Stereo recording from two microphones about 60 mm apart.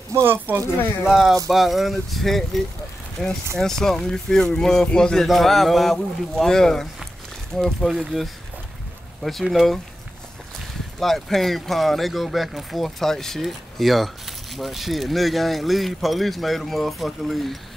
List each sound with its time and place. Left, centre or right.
0.1 s speech: right
1.0 s speech: centre
8.0 s speech: centre
11.0 s speech: centre